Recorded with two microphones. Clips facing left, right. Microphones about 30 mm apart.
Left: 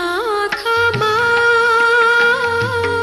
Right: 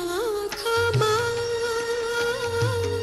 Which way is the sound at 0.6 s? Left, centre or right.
Left.